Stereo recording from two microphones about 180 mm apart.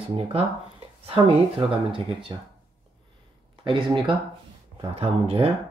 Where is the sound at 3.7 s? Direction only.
25° right (ahead or behind).